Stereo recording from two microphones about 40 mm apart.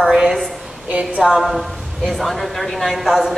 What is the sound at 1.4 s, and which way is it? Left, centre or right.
A man's voice, centre.